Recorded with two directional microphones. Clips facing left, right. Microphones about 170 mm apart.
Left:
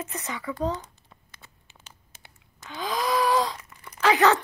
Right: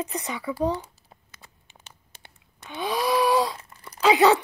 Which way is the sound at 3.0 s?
10° right (ahead or behind).